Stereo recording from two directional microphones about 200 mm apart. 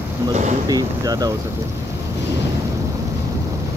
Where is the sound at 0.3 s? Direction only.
35° right (ahead or behind).